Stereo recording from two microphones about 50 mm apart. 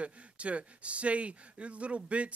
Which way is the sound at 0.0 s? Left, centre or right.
Right.